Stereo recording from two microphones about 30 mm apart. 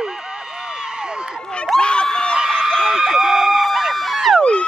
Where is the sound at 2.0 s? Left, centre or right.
Left.